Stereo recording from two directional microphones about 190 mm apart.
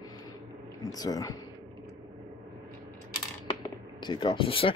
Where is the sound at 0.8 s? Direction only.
20° left (ahead or behind).